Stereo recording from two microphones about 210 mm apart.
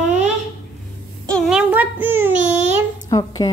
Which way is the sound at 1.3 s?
Centre (ahead or behind).